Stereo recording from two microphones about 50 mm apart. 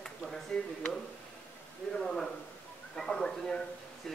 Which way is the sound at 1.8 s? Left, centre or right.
Centre.